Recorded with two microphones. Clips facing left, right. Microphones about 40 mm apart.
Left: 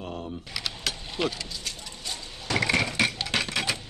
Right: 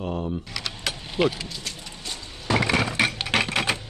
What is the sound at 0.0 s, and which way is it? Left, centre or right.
Keys jangling, right.